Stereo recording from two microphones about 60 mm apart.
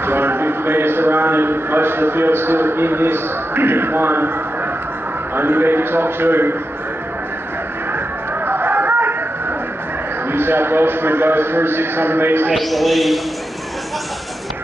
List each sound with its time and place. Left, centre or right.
0.0 s a man's voice: right
5.3 s a man's voice: right
8.5 s a sound: right
10.3 s a man's voice: right
12.5 s speech: centre